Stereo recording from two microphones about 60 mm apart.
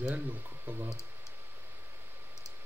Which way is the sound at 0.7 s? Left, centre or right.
Right.